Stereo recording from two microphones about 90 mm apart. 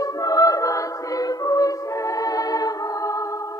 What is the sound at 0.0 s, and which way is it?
Music, 45° left (ahead or behind).